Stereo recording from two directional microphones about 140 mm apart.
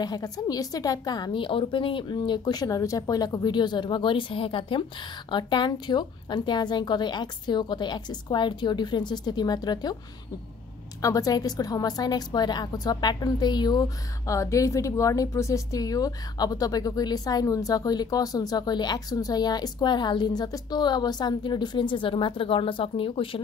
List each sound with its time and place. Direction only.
0.0 s a woman's voice: 30° left (ahead or behind)
11.0 s a woman's voice: 25° left (ahead or behind)